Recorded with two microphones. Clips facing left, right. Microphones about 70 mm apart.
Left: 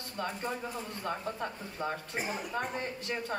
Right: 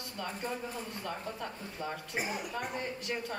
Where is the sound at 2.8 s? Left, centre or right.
Left.